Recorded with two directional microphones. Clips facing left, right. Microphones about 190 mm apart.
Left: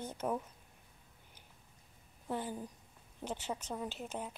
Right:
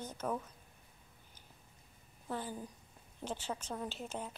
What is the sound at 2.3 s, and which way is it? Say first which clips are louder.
A woman's voice: left 2 dB; 20° left (ahead or behind).